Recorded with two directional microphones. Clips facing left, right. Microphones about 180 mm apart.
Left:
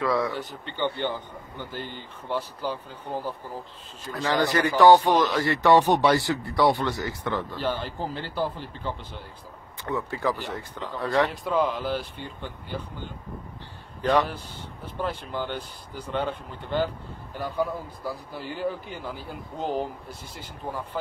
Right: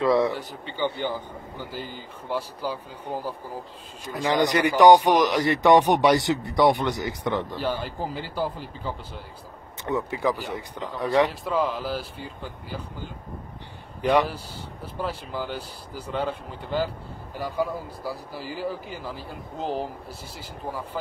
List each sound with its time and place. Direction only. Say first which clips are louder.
0.0 s speech: right 4 dB; 25° right (ahead or behind)
0.3 s a man's voice: right 1 dB; 10° right (ahead or behind)
7.6 s a man's voice: right 1 dB; 5° right (ahead or behind)
11.4 s a man's voice: left 1 dB; centre (ahead or behind)